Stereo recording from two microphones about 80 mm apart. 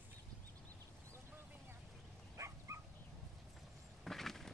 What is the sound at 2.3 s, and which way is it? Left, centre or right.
Dog, right.